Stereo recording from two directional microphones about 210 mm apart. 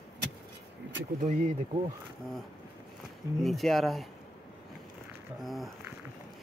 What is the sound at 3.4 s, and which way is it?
Speech, centre (ahead or behind).